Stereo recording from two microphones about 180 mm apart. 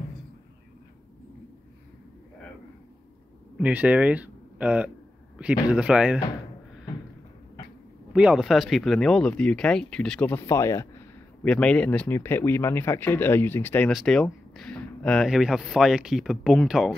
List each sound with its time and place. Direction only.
3.5 s speech: 5° right (ahead or behind)
8.1 s speech: 5° right (ahead or behind)